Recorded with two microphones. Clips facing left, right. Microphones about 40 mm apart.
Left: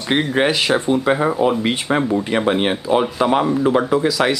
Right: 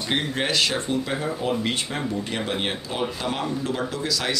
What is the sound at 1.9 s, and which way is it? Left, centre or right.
Speech, left.